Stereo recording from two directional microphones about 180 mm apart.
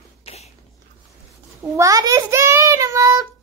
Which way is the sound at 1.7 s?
20° right (ahead or behind).